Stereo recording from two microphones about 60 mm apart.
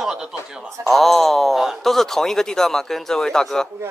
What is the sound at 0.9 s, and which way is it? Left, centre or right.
Speech, centre.